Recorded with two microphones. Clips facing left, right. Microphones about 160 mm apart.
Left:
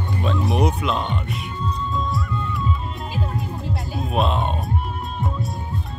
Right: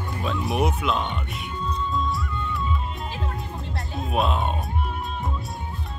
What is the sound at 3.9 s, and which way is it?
Speech, centre (ahead or behind).